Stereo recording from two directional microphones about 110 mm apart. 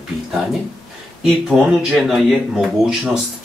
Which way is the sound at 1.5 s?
Centre (ahead or behind).